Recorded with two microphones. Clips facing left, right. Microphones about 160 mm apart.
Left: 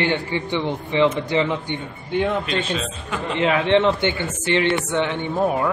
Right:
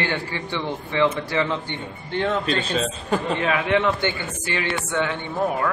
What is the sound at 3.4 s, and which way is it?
Speech, 25° left (ahead or behind).